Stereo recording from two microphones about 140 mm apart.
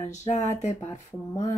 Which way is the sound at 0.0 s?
20° left (ahead or behind).